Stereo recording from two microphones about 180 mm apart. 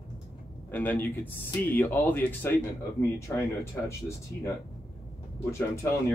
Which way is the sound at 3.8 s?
15° left (ahead or behind).